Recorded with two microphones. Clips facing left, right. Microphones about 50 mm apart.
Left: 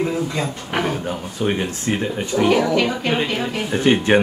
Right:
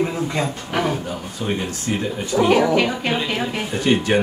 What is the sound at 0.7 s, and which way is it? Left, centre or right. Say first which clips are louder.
Speech: even; centre.